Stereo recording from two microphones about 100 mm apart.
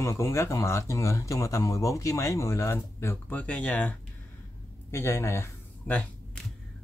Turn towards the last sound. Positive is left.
turn(degrees=10)  # may be behind; listen again after turning